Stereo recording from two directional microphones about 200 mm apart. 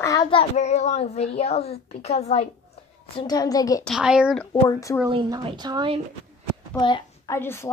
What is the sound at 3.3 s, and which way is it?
Speech, 20° left (ahead or behind).